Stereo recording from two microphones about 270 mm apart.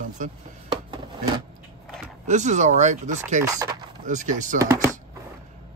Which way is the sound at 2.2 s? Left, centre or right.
Right.